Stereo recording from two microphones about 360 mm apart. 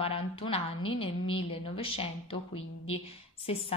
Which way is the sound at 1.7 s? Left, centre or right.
Centre.